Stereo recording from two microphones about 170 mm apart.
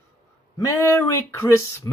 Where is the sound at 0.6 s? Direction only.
15° left (ahead or behind).